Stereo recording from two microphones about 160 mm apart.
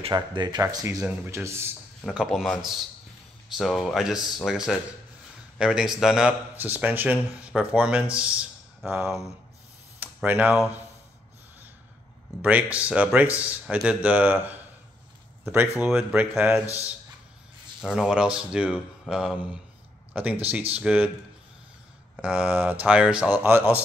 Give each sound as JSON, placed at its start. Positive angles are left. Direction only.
{"t": 0.1, "sound": "speech", "side_deg": -30}
{"t": 2.0, "sound": "speech", "side_deg": 0}
{"t": 9.9, "sound": "a sound", "side_deg": -10}
{"t": 12.4, "sound": "speech", "side_deg": -10}
{"t": 15.8, "sound": "speech", "side_deg": -5}
{"t": 17.8, "sound": "speech", "side_deg": -5}
{"t": 22.1, "sound": "speech", "side_deg": -5}